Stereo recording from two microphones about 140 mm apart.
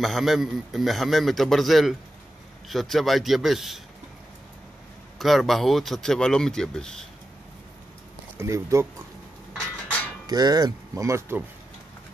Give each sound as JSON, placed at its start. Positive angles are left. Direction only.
{"t": 0.0, "sound": "a man's voice", "side_deg": 0}
{"t": 5.2, "sound": "a man's voice", "side_deg": 0}
{"t": 8.4, "sound": "speech", "side_deg": -20}
{"t": 10.2, "sound": "speech", "side_deg": -30}